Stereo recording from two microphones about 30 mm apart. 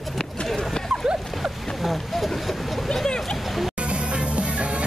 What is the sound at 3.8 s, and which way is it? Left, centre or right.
Music, right.